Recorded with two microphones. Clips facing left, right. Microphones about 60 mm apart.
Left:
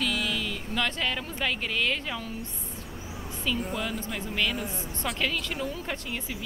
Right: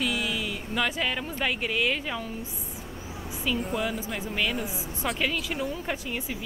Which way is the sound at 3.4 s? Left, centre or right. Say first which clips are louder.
Right 2 dB; centre.